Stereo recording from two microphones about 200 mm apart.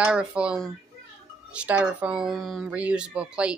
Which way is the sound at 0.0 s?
5° right (ahead or behind).